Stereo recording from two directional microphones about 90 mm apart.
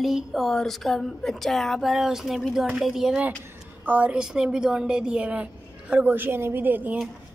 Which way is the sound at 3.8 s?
15° right (ahead or behind).